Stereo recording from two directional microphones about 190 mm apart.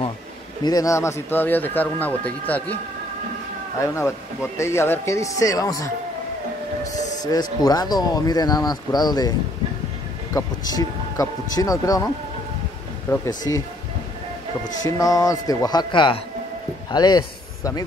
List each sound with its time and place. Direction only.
0.7 s speech: 20° left (ahead or behind)
3.8 s speech: 15° left (ahead or behind)
7.2 s speech: 20° left (ahead or behind)
10.3 s speech: 20° left (ahead or behind)
13.5 s speech: 15° left (ahead or behind)
14.9 s speech: 15° left (ahead or behind)